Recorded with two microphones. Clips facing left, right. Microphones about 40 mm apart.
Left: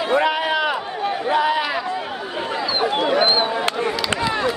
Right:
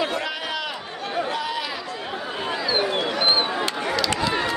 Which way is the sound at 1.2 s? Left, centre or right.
Left.